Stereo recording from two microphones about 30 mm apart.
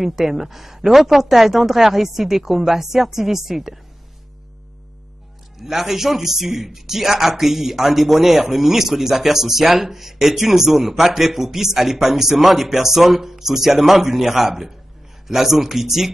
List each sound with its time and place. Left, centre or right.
0.0 s a man's voice: centre
5.6 s a man's voice: centre